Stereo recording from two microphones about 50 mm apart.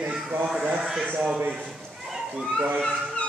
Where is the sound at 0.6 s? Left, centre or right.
Right.